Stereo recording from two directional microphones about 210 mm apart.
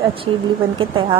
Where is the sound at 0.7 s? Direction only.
25° right (ahead or behind).